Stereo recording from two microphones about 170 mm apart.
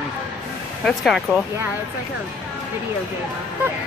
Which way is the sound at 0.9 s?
Centre (ahead or behind).